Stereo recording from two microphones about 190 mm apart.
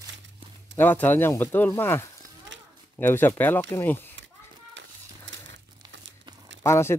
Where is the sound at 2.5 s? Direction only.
70° right (ahead or behind).